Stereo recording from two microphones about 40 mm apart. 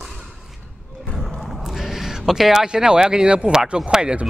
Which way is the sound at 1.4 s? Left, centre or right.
Centre.